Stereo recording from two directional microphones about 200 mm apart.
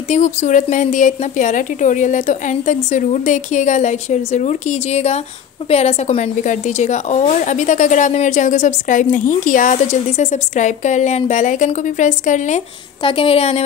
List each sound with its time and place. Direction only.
0.1 s a woman's voice: 35° left (ahead or behind)